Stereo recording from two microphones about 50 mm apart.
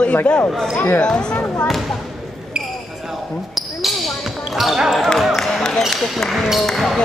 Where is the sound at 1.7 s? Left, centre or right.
Centre.